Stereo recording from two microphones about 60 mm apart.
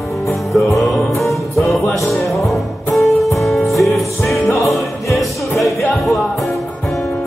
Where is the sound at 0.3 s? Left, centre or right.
Centre.